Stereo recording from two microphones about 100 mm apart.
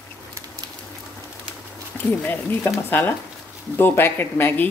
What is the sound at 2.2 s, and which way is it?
Speech, 20° left (ahead or behind).